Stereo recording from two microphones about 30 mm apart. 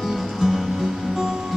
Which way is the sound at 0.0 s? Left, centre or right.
Centre.